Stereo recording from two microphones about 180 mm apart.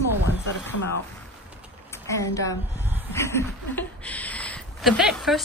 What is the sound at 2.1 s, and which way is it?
A woman's voice, 15° left (ahead or behind).